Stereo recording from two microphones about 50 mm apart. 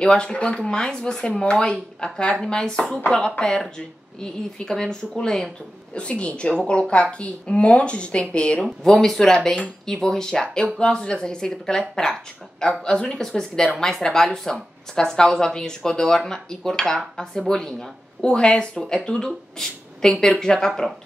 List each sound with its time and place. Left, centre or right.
0.0 s speech: centre
5.9 s speech: left
8.8 s speech: centre